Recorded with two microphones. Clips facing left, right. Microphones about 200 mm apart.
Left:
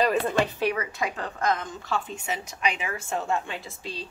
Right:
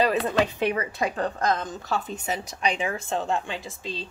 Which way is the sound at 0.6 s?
25° right (ahead or behind).